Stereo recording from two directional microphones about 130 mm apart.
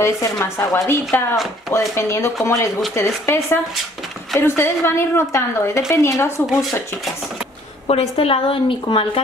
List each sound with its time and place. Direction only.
0.0 s a woman's voice: 20° left (ahead or behind)
7.8 s a woman's voice: 50° left (ahead or behind)